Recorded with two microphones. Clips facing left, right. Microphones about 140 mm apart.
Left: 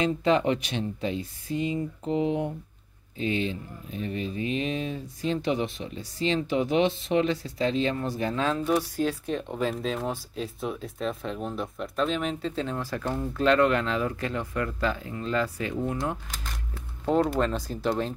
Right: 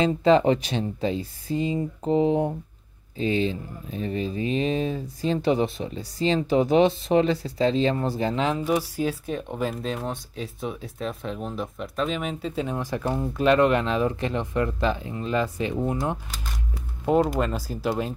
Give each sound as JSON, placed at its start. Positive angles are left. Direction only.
{"t": 0.0, "sound": "speech", "side_deg": -30}
{"t": 8.4, "sound": "speech", "side_deg": -10}
{"t": 17.0, "sound": "speech", "side_deg": -10}